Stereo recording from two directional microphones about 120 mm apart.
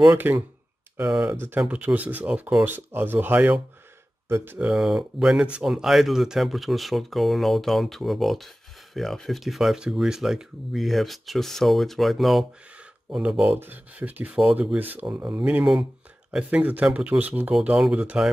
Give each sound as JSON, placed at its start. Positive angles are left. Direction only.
{"t": 0.0, "sound": "speech", "side_deg": -15}
{"t": 1.3, "sound": "speech", "side_deg": -20}
{"t": 1.6, "sound": "speech", "side_deg": -10}
{"t": 4.6, "sound": "speech", "side_deg": -5}